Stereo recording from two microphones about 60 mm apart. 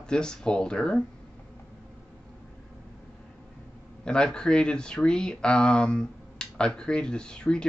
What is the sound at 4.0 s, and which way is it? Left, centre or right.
Speech, centre.